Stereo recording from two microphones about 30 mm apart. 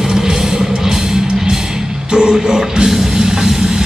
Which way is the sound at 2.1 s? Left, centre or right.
Right.